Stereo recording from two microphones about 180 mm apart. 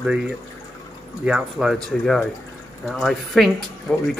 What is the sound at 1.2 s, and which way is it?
Speech, 5° right (ahead or behind).